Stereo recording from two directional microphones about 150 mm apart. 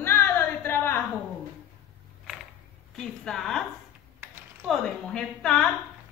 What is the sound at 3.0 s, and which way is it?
Speech, 5° left (ahead or behind).